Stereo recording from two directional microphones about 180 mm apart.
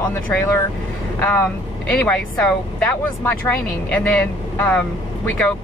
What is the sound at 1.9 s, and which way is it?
Speech, 5° left (ahead or behind).